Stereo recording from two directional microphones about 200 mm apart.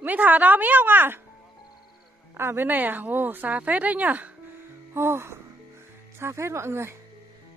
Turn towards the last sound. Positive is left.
turn(degrees=-15)  # may be behind; listen again after turning